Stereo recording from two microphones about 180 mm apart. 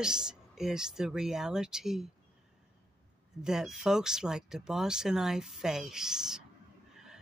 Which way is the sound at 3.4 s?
5° right (ahead or behind).